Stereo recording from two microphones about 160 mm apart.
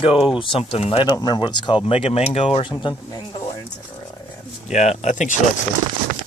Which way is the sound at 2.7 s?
25° left (ahead or behind).